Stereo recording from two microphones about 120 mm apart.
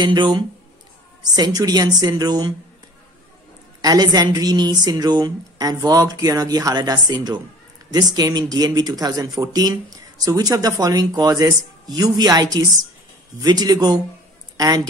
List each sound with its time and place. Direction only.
0.0 s a woman's voice: 40° right (ahead or behind)
3.8 s a woman's voice: 30° right (ahead or behind)